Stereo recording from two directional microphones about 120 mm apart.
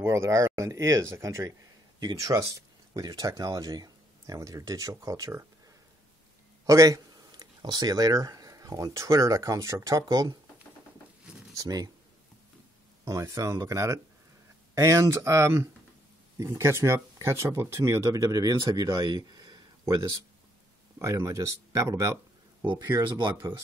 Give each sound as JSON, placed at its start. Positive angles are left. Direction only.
{"t": 0.0, "sound": "speech", "side_deg": -25}
{"t": 6.6, "sound": "speech", "side_deg": -30}
{"t": 11.5, "sound": "speech", "side_deg": -30}
{"t": 13.0, "sound": "speech", "side_deg": -25}